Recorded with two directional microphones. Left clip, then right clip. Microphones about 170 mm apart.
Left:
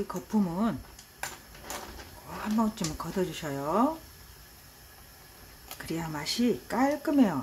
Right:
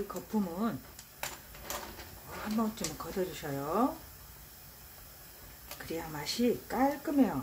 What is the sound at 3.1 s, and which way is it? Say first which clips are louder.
Speech: left 4 dB; 35° left (ahead or behind).